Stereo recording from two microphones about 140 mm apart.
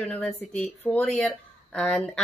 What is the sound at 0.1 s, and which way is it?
Speech, 10° left (ahead or behind).